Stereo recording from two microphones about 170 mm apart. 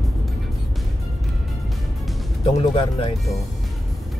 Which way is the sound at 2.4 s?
35° left (ahead or behind).